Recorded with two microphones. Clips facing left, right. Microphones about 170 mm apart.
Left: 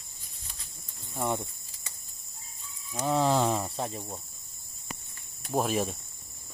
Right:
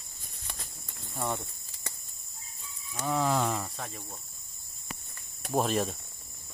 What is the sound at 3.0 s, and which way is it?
Speech, 30° left (ahead or behind).